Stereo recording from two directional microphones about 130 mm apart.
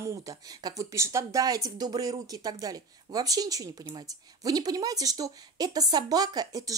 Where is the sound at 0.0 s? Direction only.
25° right (ahead or behind).